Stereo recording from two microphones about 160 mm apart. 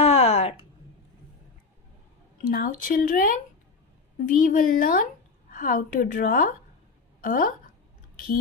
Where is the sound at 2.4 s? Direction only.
60° left (ahead or behind).